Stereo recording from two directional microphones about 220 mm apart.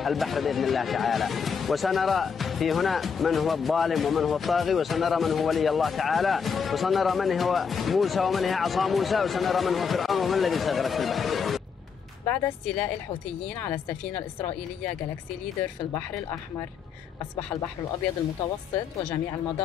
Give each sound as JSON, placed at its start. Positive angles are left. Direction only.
{"t": 0.0, "sound": "speech", "side_deg": 0}